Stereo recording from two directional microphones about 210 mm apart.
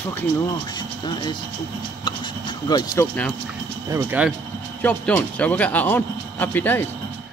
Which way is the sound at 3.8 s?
10° right (ahead or behind).